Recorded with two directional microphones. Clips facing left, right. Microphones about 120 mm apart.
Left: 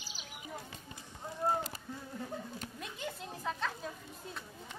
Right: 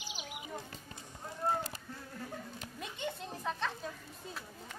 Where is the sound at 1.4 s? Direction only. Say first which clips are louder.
Left 1 dB; 10° left (ahead or behind).